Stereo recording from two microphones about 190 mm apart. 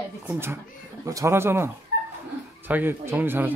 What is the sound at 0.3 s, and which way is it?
Speech, 10° right (ahead or behind).